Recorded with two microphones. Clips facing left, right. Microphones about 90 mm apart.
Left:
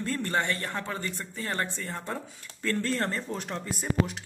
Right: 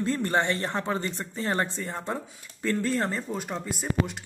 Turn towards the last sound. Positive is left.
turn(degrees=0)  # may be behind; listen again after turning